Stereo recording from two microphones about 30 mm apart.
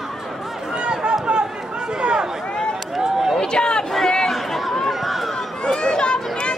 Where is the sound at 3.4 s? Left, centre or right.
Left.